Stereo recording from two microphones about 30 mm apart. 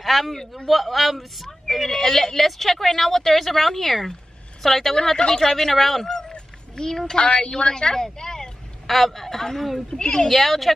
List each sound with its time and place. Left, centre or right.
0.0 s a sound: centre
0.7 s a woman's voice: centre
6.0 s a sound: centre
6.8 s a woman's voice: centre
7.2 s a woman's voice: left
8.8 s speech: centre
9.8 s a woman's voice: left
10.2 s speech: centre